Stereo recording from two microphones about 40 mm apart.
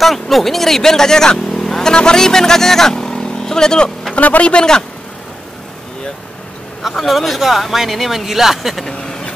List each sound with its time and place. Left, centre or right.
0.0 s speech: centre
4.1 s speech: left
7.1 s speech: centre
8.8 s speech: centre